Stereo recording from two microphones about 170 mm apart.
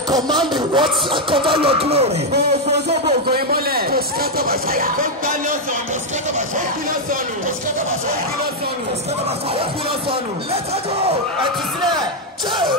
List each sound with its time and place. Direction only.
0.6 s speech: 30° right (ahead or behind)
3.3 s speech: 65° right (ahead or behind)